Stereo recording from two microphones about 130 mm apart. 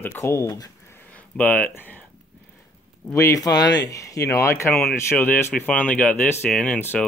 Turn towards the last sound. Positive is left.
turn(degrees=15)  # may be behind; listen again after turning